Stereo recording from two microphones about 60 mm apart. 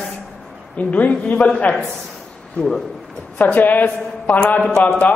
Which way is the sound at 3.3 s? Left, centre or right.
Left.